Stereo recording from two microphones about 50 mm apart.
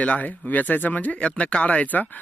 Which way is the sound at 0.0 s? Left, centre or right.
Left.